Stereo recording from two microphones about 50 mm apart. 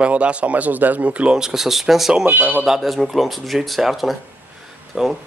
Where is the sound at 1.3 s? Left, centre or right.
Centre.